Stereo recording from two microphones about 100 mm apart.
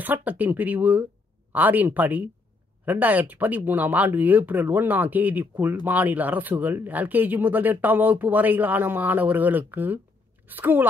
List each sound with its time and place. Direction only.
0.0 s a woman's voice: 15° right (ahead or behind)